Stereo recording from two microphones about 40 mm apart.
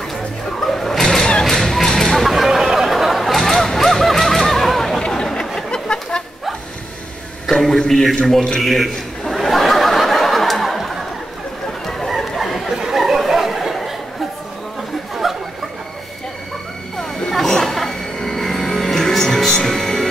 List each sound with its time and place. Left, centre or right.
0.6 s vehicle: centre
3.6 s music: centre
5.0 s chatter: centre
5.7 s a sound: left
7.9 s a man's voice: centre
8.5 s chuckle: centre
12.4 s chatter: centre
15.2 s a sound: centre
17.3 s music: centre